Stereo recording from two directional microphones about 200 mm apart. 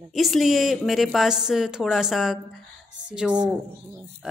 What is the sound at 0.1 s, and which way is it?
A woman's voice, centre (ahead or behind).